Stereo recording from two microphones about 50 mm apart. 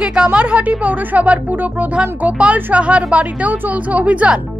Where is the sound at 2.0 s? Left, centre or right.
Right.